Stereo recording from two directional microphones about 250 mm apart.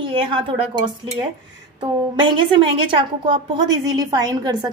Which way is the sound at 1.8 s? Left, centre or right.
Centre.